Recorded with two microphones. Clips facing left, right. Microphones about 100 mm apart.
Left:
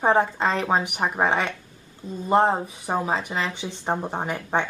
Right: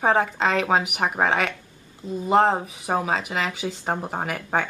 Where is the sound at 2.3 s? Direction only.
5° left (ahead or behind).